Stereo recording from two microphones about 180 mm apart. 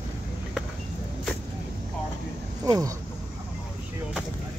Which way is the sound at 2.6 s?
20° right (ahead or behind).